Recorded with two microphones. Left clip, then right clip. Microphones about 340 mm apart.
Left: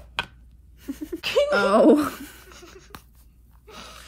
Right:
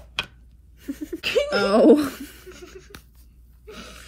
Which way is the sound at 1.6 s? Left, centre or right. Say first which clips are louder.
Right 3 dB; centre.